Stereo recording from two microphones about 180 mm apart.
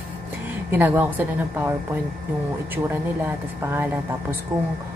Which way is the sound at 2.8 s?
10° right (ahead or behind).